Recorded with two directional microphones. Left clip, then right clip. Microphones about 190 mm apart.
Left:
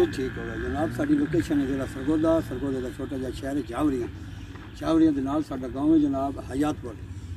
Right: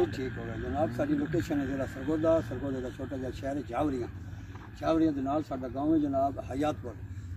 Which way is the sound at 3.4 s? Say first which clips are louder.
Left 4 dB; 15° right (ahead or behind).